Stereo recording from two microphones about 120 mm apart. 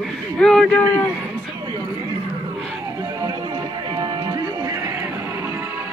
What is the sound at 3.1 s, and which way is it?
Music, 35° right (ahead or behind).